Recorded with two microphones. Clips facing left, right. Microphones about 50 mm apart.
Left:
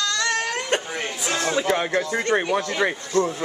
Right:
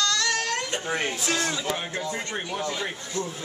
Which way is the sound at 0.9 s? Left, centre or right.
Centre.